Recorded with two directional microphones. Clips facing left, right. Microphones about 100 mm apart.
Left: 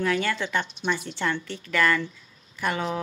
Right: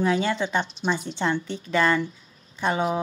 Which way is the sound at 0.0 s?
20° right (ahead or behind).